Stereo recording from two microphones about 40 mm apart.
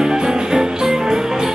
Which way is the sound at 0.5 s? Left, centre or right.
Centre.